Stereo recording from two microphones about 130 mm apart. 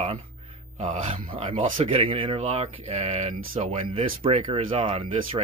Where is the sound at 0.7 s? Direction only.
65° right (ahead or behind).